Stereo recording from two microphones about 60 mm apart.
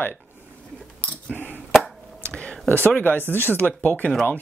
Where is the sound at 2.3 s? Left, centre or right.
Centre.